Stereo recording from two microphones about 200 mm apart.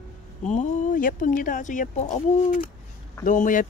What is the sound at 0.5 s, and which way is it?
Speech, 40° left (ahead or behind).